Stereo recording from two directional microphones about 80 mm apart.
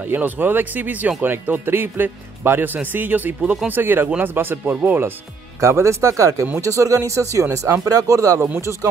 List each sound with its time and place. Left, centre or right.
0.0 s a man's voice: right
5.6 s speech: right